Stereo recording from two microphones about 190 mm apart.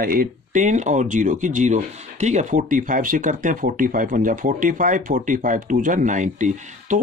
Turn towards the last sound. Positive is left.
turn(degrees=-40)  # may be behind; listen again after turning